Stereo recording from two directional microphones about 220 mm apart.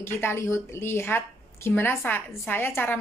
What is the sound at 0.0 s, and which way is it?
A woman's voice, 10° left (ahead or behind).